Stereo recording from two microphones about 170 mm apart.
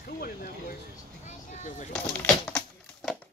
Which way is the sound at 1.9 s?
5° left (ahead or behind).